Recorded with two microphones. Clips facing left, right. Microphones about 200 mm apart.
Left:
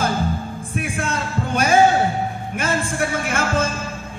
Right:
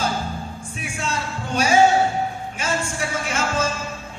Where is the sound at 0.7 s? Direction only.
55° left (ahead or behind).